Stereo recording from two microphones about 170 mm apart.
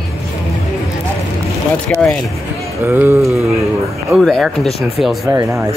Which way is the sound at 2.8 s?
15° right (ahead or behind).